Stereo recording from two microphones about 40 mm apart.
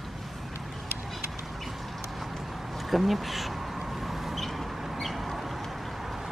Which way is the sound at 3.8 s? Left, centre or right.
Centre.